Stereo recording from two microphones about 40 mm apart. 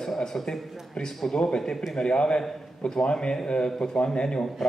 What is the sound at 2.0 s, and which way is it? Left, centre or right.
A man's voice, left.